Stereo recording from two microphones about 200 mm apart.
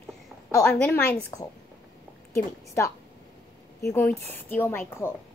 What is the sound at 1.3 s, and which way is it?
Speech, 15° left (ahead or behind).